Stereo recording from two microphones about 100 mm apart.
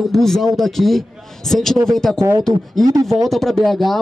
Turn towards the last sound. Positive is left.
turn(degrees=0)  # may be behind; listen again after turning